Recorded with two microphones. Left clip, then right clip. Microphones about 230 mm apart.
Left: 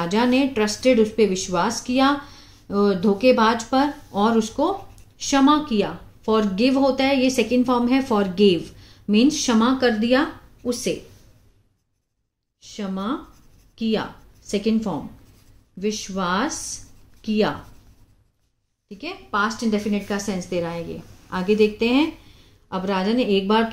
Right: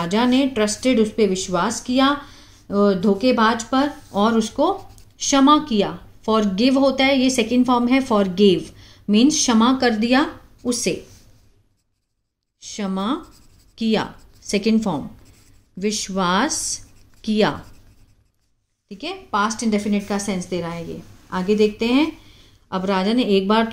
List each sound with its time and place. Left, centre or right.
0.0 s speech: centre; by 11.0 s right
12.5 s speech: right
18.9 s speech: right